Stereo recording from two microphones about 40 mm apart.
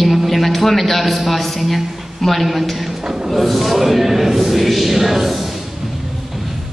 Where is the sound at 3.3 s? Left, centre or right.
Centre.